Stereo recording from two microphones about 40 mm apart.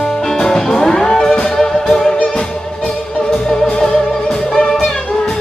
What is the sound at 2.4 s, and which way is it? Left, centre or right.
Organ, centre.